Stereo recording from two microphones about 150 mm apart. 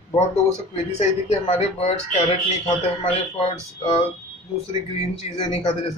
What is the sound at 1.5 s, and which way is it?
Speech, 45° left (ahead or behind).